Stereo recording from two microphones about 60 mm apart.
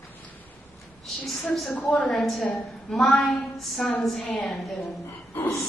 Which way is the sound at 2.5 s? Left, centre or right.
Centre.